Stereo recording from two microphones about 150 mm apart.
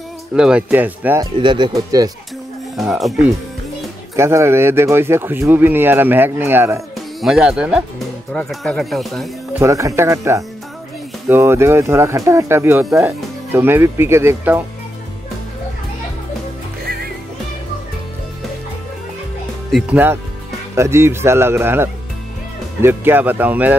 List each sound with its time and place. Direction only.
0.3 s speech: 5° right (ahead or behind)
1.4 s speech: 30° right (ahead or behind)
2.8 s speech: centre (ahead or behind)
4.2 s speech: 20° right (ahead or behind)
7.2 s speech: centre (ahead or behind)
8.3 s speech: 5° left (ahead or behind)
9.5 s speech: 20° right (ahead or behind)
16.8 s music: 90° right
19.7 s speech: 10° right (ahead or behind)